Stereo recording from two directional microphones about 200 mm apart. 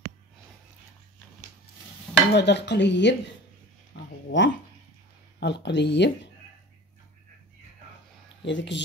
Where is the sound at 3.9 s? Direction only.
65° left (ahead or behind).